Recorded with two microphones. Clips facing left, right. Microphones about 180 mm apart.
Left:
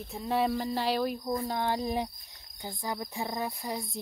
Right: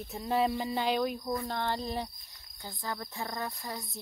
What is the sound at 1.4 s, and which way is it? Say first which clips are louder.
Speech: left 3 dB; 10° left (ahead or behind).